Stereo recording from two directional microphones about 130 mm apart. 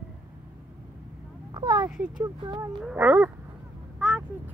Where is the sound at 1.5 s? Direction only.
35° right (ahead or behind).